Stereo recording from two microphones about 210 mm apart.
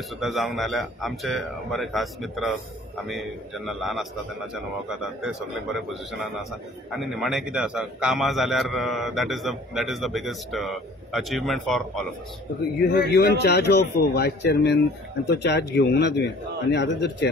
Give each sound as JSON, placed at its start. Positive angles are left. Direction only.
{"t": 0.2, "sound": "a man's voice", "side_deg": 0}
{"t": 12.8, "sound": "a man's voice", "side_deg": 45}